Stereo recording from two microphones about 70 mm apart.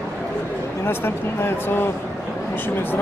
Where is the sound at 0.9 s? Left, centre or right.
Left.